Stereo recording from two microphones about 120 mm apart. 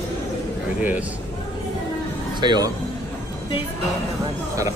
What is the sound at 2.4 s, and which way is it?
Speech, 35° right (ahead or behind).